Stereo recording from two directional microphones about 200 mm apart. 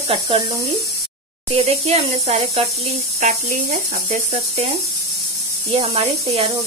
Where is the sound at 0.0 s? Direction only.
30° right (ahead or behind).